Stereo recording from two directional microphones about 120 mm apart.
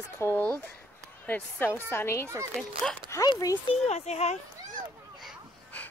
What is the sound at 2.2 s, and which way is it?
Speech, 25° right (ahead or behind).